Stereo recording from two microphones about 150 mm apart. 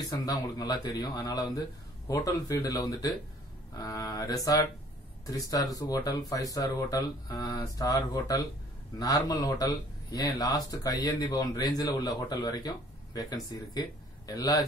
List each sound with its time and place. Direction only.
0.1 s speech: 25° left (ahead or behind)